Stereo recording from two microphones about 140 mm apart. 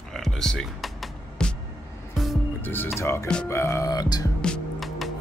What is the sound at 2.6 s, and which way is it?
Music, 15° left (ahead or behind).